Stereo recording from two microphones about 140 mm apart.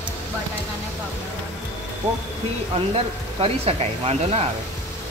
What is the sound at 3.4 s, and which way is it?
Speech, 45° right (ahead or behind).